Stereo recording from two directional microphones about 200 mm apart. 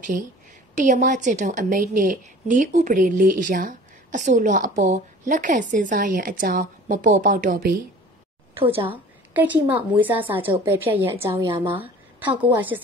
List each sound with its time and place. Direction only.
0.7 s a woman's voice: 40° right (ahead or behind)
8.5 s a woman's voice: 30° right (ahead or behind)
9.3 s a woman's voice: 10° right (ahead or behind)